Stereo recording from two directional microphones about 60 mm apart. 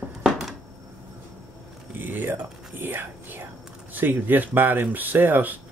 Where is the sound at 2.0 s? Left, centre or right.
Right.